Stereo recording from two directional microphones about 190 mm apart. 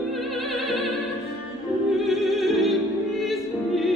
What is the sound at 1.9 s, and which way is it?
Opera, centre (ahead or behind).